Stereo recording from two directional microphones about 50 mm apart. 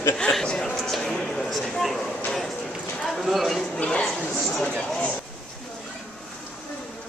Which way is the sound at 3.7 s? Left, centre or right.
Left.